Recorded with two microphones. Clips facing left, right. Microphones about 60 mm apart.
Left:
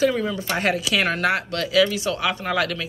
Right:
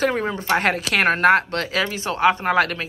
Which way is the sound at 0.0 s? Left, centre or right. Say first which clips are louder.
Even; right.